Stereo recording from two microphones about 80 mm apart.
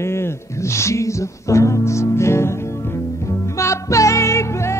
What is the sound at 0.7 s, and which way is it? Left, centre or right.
Music, left.